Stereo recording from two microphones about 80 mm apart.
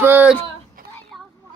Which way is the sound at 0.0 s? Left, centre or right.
Right.